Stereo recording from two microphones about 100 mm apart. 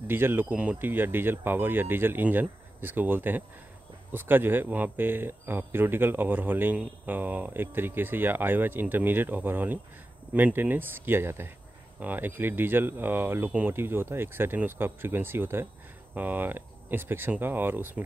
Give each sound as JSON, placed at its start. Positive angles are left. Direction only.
{"t": 0.1, "sound": "speech", "side_deg": -20}